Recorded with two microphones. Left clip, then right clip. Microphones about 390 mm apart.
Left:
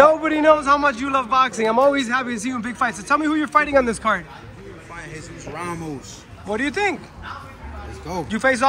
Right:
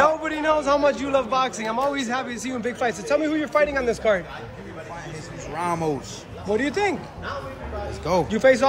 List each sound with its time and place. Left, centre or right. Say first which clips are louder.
0.0 s a man's voice: left 6 dB; centre
5.5 s a sound: right 4 dB; right
6.5 s a man's voice: left 1 dB; centre
8.1 s a man's voice: right 3 dB; centre